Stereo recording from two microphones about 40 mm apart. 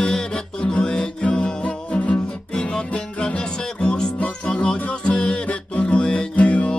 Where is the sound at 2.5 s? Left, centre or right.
Centre.